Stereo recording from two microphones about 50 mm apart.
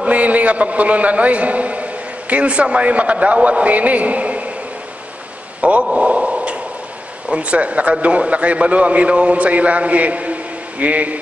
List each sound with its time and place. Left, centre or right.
0.0 s a man's voice: right
5.6 s a man's voice: right
5.9 s a sound: right
7.2 s a man's voice: right